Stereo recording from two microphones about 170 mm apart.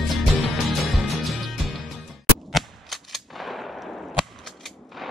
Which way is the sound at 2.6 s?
Centre (ahead or behind).